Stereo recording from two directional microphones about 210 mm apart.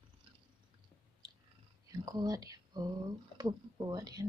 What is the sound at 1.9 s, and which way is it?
Speech, 20° right (ahead or behind).